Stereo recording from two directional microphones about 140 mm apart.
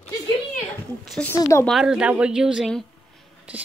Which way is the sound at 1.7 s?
5° right (ahead or behind).